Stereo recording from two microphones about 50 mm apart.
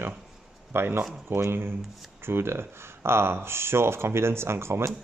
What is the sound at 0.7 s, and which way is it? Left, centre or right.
Speech, right.